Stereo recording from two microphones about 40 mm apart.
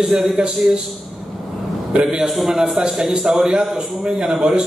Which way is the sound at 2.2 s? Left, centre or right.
Centre.